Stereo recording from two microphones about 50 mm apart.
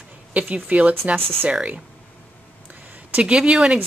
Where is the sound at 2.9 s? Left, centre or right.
Right.